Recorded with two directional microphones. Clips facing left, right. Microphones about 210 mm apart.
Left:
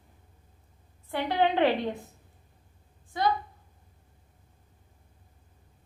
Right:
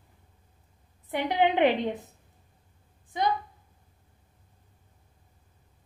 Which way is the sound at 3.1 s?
20° right (ahead or behind).